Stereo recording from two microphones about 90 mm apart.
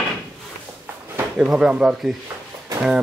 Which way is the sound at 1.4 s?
10° right (ahead or behind).